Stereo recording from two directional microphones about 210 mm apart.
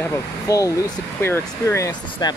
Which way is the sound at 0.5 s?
15° left (ahead or behind).